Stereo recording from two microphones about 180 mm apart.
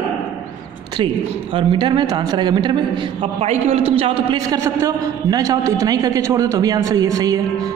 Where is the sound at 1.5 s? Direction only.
25° right (ahead or behind).